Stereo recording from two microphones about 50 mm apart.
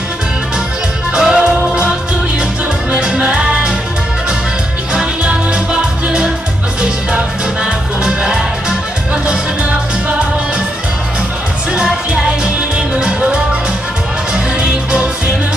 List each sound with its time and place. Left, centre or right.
1.1 s music: centre
2.9 s music: right
5.2 s music: right
11.7 s music: centre